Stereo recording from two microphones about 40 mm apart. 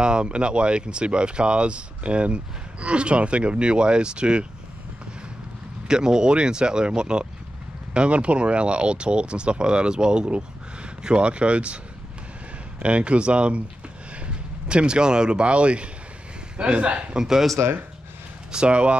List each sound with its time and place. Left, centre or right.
0.0 s speech: right
5.9 s speech: centre
17.2 s speech: centre
18.5 s speech: right